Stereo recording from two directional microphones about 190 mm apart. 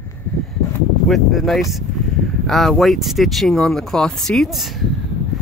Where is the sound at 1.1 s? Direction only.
Centre (ahead or behind).